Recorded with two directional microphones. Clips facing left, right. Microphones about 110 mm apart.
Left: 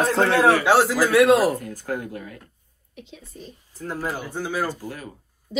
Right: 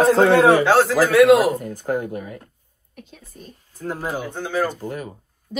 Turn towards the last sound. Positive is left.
turn(degrees=-20)  # may be behind; listen again after turning